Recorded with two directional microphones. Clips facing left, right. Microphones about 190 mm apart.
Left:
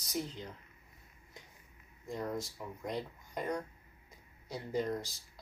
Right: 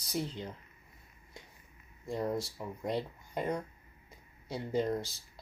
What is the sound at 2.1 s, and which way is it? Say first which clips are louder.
Speech: right 4 dB; 30° right (ahead or behind).